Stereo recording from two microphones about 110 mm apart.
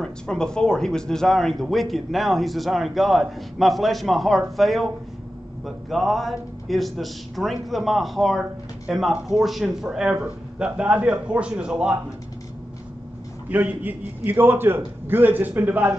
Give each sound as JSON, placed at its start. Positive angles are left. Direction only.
{"t": 0.0, "sound": "speech", "side_deg": 5}
{"t": 13.5, "sound": "a man's voice", "side_deg": -15}